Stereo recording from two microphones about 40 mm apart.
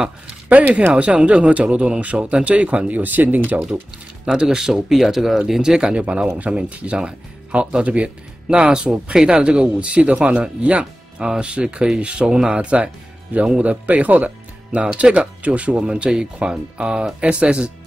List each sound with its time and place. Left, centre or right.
0.9 s speech: right
3.0 s speech: right
4.5 s speech: centre
5.6 s speech: centre
7.8 s speech: right
8.5 s speech: centre
15.8 s speech: right